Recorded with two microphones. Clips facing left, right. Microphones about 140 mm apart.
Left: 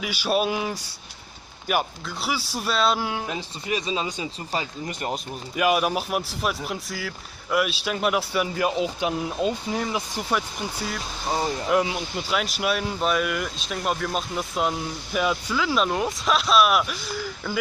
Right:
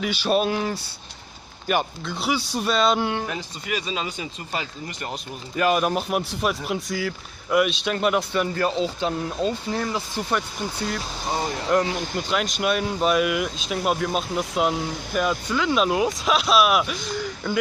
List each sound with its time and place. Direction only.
0.0 s speech: 10° left (ahead or behind)
3.3 s speech: 25° left (ahead or behind)
5.6 s speech: 10° left (ahead or behind)